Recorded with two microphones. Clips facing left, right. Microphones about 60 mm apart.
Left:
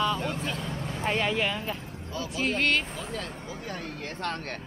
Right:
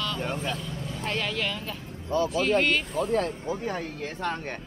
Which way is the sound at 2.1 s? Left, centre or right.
Right.